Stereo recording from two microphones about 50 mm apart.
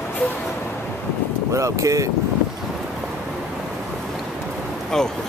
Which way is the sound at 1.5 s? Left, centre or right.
Right.